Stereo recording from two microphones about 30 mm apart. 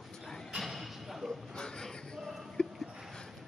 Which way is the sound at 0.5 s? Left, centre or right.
Centre.